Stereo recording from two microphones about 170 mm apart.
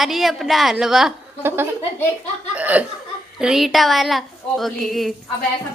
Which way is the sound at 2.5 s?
10° right (ahead or behind).